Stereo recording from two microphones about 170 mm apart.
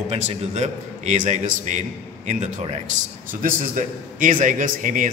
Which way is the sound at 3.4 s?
50° right (ahead or behind).